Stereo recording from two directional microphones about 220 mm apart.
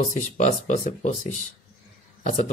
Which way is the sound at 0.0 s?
35° left (ahead or behind).